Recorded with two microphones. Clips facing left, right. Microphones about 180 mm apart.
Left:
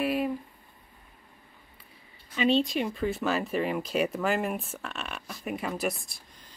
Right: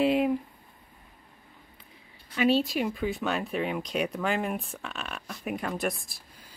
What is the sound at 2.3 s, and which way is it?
Speech, 5° right (ahead or behind).